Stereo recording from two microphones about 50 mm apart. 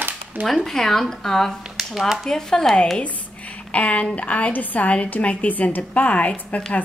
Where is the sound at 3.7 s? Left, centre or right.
Left.